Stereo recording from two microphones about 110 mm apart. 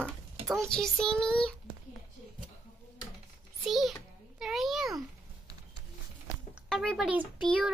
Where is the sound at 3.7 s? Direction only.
Centre (ahead or behind).